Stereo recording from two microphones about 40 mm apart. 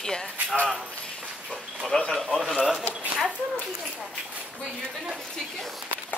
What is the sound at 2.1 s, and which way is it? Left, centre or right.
Speech, centre.